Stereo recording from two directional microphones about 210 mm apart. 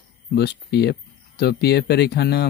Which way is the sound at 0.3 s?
50° left (ahead or behind).